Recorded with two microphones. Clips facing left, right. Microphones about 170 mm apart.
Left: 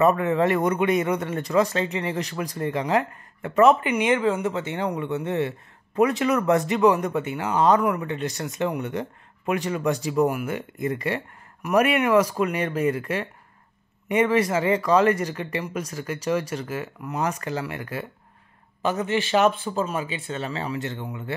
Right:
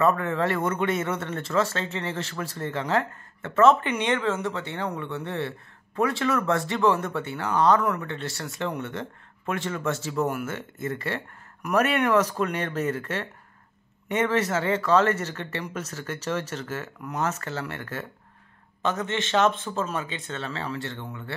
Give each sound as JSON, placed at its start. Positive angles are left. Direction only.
{"t": 0.0, "sound": "speech", "side_deg": 20}